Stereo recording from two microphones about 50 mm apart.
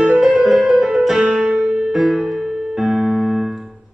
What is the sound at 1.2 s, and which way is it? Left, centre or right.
Music, right.